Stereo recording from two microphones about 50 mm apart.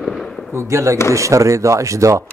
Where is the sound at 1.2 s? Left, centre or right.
Right.